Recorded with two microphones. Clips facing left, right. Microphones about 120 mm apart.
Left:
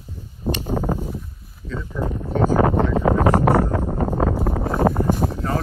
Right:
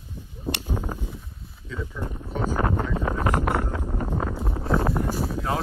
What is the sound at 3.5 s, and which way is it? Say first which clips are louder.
Wind noise: left 8 dB; 55° left (ahead or behind).